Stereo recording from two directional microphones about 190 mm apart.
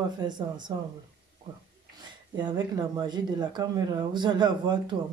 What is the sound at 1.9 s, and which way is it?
Speech, 25° right (ahead or behind).